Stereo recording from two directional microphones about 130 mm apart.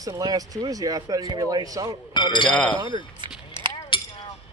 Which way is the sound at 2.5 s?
10° left (ahead or behind).